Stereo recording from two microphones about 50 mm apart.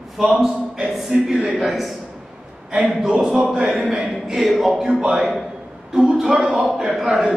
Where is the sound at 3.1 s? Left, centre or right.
Centre.